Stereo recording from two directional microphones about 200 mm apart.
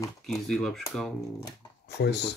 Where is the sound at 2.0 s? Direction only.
55° left (ahead or behind).